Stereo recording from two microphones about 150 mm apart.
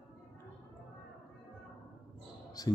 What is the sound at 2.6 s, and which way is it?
Speech, 25° left (ahead or behind).